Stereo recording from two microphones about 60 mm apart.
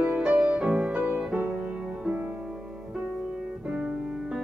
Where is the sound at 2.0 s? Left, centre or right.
Right.